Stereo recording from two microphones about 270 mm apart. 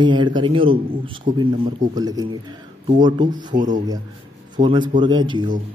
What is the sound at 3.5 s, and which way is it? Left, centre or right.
Speech, right.